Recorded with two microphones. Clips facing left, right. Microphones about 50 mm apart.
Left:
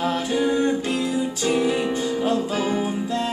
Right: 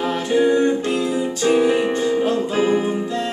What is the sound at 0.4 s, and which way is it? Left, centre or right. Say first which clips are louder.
Music: right 6 dB; right.